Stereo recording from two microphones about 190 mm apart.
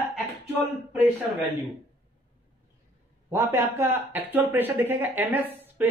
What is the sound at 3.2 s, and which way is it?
Speech, 15° right (ahead or behind).